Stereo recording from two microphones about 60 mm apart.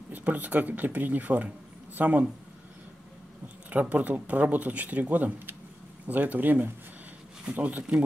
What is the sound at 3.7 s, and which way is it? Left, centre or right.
Speech, right.